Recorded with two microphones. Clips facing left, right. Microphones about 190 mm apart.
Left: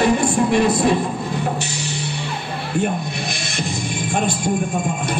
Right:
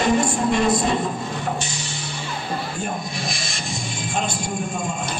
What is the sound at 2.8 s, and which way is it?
Music, 60° left (ahead or behind).